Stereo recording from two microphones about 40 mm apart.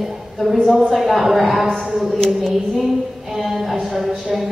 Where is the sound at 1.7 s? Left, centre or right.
Centre.